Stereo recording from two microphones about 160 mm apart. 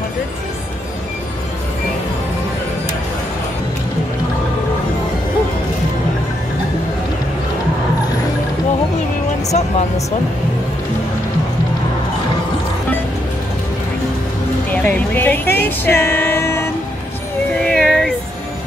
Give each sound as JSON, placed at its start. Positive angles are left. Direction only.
{"t": 9.5, "sound": "speech", "side_deg": 45}
{"t": 14.7, "sound": "speech", "side_deg": 10}
{"t": 15.8, "sound": "a sound", "side_deg": 15}
{"t": 17.6, "sound": "cat", "side_deg": 0}